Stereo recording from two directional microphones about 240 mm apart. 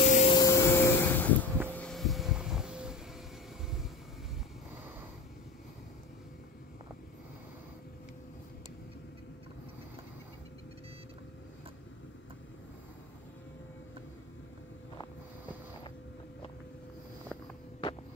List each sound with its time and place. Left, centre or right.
0.0 s vacuum cleaner: left
0.4 s vacuum cleaner: centre
1.8 s vehicle: centre